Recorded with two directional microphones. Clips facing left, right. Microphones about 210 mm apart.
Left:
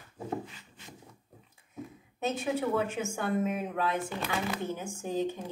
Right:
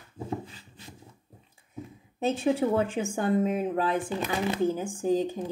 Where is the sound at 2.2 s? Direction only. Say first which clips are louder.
Right 5 dB; 30° right (ahead or behind).